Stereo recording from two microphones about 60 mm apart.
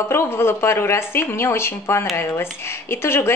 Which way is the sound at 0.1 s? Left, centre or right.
Left.